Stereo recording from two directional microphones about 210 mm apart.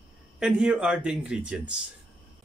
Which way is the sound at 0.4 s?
5° right (ahead or behind).